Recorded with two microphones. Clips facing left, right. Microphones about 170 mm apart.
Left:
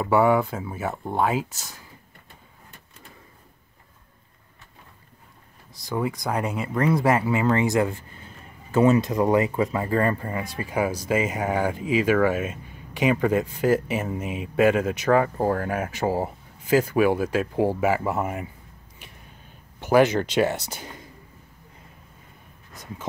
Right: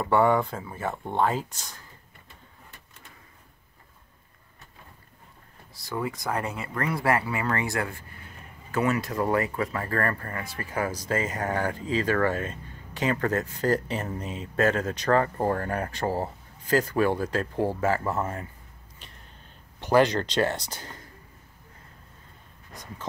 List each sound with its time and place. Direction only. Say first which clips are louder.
0.0 s speech: left 2 dB; 5° left (ahead or behind)
5.7 s speech: left 4 dB; 15° left (ahead or behind)
19.8 s speech: left 3 dB; 5° left (ahead or behind)